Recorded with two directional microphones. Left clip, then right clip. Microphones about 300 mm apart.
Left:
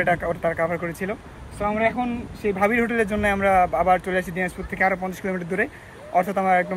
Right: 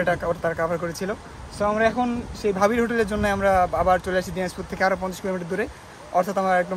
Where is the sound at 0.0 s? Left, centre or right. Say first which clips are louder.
Left 1 dB; centre.